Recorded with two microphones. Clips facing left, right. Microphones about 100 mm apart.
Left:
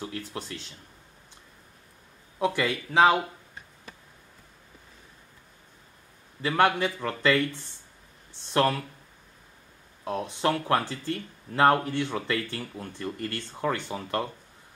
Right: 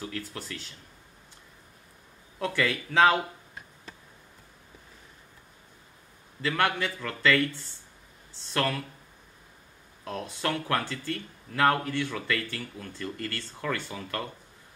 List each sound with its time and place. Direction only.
0.3 s speech: 20° left (ahead or behind)
2.3 s speech: 20° left (ahead or behind)
6.4 s speech: 20° left (ahead or behind)
10.0 s speech: 20° left (ahead or behind)